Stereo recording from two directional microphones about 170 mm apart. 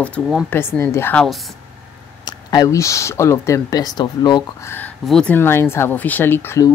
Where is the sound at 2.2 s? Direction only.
20° left (ahead or behind).